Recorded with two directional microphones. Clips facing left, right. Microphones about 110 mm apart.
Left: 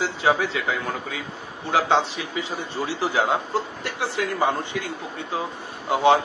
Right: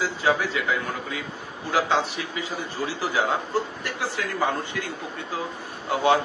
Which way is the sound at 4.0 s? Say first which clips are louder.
Left 3 dB; 20° left (ahead or behind).